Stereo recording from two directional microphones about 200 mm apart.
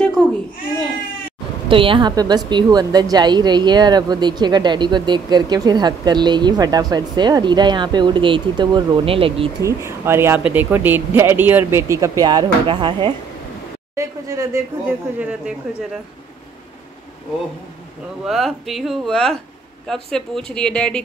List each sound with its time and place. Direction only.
0.2 s babbling: centre (ahead or behind)
1.7 s a woman's voice: 25° right (ahead or behind)
9.6 s speech: 15° right (ahead or behind)
18.2 s speech: centre (ahead or behind)